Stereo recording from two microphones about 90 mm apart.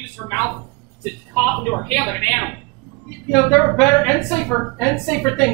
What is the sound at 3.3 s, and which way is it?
A woman's voice, 10° left (ahead or behind).